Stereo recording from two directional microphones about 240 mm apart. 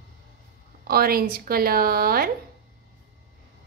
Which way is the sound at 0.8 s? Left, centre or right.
Right.